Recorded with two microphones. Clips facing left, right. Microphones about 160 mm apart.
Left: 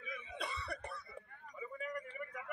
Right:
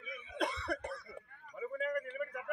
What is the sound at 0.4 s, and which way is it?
Cough, 90° right.